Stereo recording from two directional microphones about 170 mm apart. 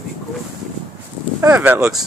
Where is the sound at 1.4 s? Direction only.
10° right (ahead or behind).